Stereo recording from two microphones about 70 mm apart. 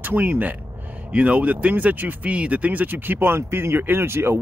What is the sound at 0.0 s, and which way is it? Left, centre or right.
Speech, right.